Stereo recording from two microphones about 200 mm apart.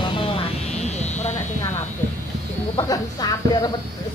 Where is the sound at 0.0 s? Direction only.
25° left (ahead or behind).